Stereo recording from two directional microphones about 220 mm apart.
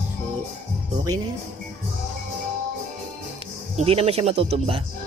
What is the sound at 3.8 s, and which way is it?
Speech, 25° right (ahead or behind).